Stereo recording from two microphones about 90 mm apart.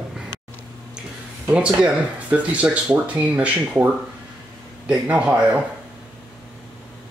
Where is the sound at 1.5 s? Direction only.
15° right (ahead or behind).